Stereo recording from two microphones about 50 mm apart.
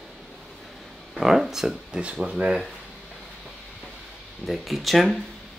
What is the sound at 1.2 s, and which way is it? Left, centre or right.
Speech, centre.